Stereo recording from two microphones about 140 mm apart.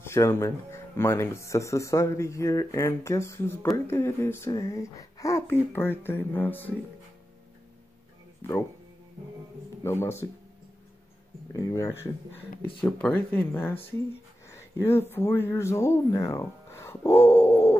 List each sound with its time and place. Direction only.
0.0 s speech: 20° left (ahead or behind)
9.8 s speech: 20° left (ahead or behind)
11.5 s speech: 20° left (ahead or behind)